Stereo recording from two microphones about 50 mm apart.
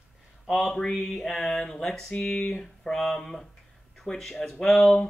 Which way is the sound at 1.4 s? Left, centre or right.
Centre.